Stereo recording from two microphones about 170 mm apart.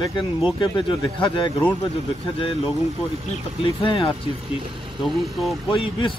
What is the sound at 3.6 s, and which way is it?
Speech, 35° left (ahead or behind).